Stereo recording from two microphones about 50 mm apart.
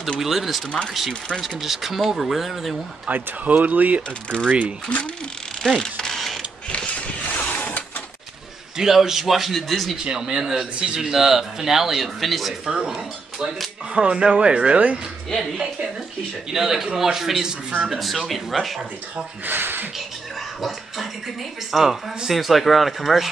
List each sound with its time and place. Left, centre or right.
0.2 s speech: centre
0.7 s speech: left
1.6 s speech: centre
3.1 s speech: right
4.8 s speech: left
5.6 s mechanisms: centre
6.7 s a sound: left
8.7 s speech: centre
10.0 s a man's voice: centre
12.6 s speech: centre
15.5 s a man's voice: centre
17.8 s speech: centre
19.4 s speech: right
20.6 s speech: centre